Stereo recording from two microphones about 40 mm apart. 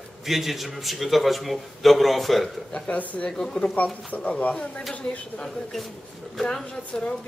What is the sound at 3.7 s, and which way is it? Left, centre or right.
Speech, left.